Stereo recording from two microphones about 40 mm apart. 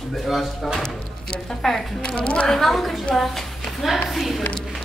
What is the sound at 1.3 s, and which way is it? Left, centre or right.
Speech, centre.